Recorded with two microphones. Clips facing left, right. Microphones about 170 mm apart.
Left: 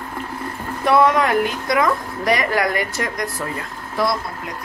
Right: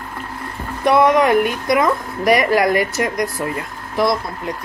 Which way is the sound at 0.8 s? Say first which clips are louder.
Right 3 dB; 15° right (ahead or behind).